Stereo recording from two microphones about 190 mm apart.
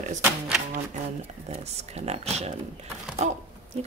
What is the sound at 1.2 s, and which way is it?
Speech, 35° right (ahead or behind).